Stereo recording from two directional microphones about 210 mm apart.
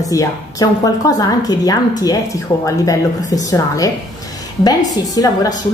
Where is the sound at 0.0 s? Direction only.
15° left (ahead or behind).